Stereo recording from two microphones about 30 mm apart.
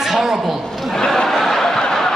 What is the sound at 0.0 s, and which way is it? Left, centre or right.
Speech, centre.